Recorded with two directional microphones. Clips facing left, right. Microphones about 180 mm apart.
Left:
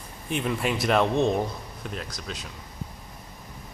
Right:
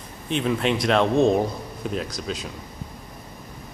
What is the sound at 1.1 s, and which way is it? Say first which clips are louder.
Speech: right 5 dB; 30° right (ahead or behind).